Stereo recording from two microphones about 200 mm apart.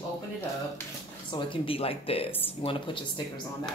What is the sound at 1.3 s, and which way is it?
Speech, 25° left (ahead or behind).